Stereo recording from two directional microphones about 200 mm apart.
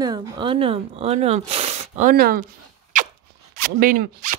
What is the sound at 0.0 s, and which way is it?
Speech, 15° right (ahead or behind).